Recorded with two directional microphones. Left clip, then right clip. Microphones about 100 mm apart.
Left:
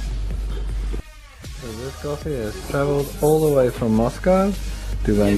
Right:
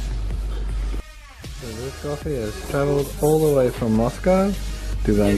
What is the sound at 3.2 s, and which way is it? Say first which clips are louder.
Speech: left 1 dB; 20° left (ahead or behind).